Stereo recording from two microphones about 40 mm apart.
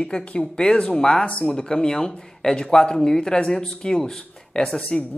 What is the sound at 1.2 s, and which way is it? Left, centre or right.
Speech, left.